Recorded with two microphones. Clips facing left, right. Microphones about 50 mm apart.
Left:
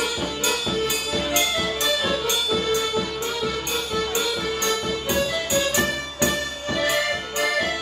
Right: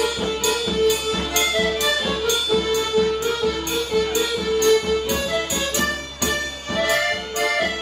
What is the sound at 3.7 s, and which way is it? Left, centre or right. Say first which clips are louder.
Music: right 4 dB; left.